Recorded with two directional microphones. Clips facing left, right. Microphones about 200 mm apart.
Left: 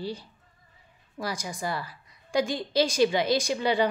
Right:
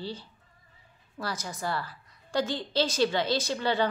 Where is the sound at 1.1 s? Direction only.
15° left (ahead or behind).